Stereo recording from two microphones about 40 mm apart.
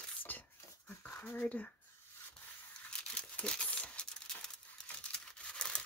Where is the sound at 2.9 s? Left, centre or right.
Left.